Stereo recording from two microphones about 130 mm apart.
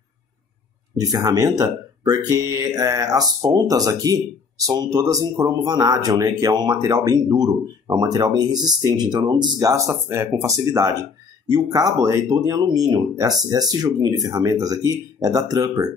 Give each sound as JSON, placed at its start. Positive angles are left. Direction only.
{"t": 0.9, "sound": "speech", "side_deg": -30}
{"t": 10.0, "sound": "speech", "side_deg": -15}